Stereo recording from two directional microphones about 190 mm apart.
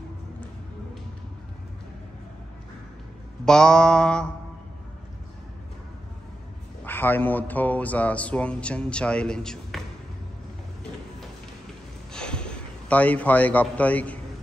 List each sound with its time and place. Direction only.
3.4 s mantra: 5° left (ahead or behind)
6.8 s speech: 10° left (ahead or behind)
12.1 s a sound: 5° left (ahead or behind)